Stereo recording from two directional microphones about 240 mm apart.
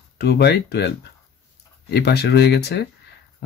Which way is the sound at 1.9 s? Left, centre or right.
Left.